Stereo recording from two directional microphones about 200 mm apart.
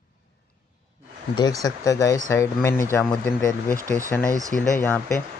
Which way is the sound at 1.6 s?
15° left (ahead or behind).